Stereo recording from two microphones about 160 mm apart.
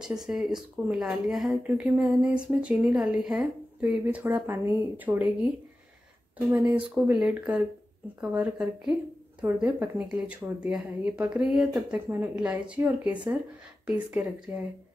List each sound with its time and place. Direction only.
0.0 s speech: 5° right (ahead or behind)
6.5 s speech: 10° right (ahead or behind)